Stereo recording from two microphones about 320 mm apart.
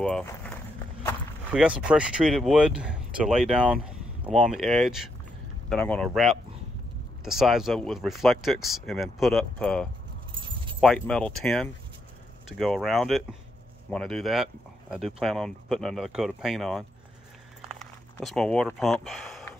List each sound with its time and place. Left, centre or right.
0.0 s speech: centre
10.4 s keys jangling: centre
10.8 s speech: centre
18.2 s speech: centre